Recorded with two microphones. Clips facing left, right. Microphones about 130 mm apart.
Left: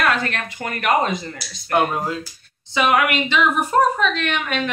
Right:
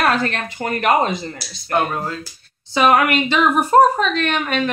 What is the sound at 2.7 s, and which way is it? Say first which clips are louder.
A woman's voice: right 3 dB; 40° right (ahead or behind).